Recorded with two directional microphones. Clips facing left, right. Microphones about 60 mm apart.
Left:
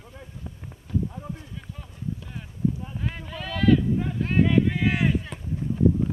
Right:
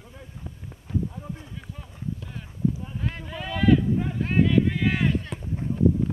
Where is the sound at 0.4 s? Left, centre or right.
Centre.